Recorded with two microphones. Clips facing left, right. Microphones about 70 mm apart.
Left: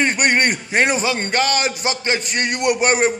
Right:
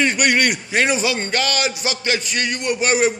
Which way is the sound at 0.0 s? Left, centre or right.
Left.